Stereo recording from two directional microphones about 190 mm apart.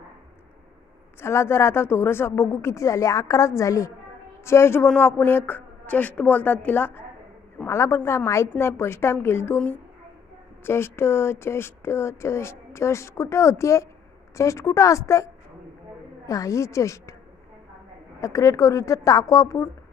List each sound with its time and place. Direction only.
1.2 s speech: 15° left (ahead or behind)
18.2 s speech: 15° left (ahead or behind)